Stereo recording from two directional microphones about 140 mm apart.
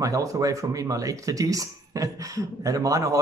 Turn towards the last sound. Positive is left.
turn(degrees=-25)  # may be behind; listen again after turning